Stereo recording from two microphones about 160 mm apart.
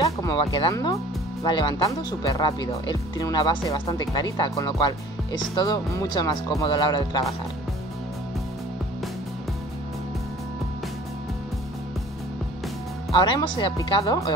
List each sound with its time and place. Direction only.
0.0 s speech: 20° left (ahead or behind)
13.2 s speech: 30° left (ahead or behind)